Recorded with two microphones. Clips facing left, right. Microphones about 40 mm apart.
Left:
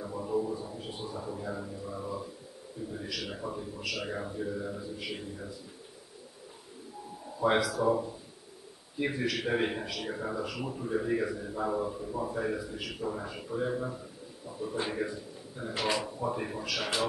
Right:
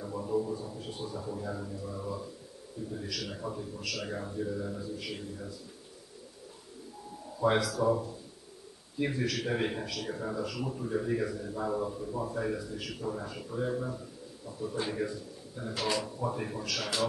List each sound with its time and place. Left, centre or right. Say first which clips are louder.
0.0 s a sound: even; centre
2.9 s a man's voice: even; centre
7.3 s a man's voice: left 1 dB; centre